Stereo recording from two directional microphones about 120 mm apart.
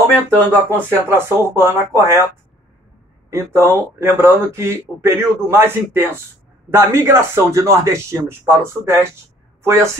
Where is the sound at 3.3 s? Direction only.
20° right (ahead or behind).